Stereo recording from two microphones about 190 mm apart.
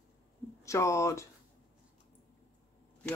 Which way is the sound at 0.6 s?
15° left (ahead or behind).